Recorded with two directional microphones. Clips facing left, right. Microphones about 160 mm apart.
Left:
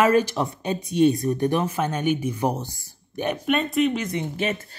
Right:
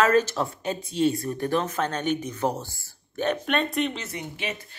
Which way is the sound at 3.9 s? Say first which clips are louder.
Left 9 dB; 15° left (ahead or behind).